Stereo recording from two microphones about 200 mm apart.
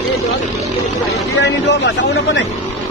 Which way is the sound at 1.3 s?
60° left (ahead or behind).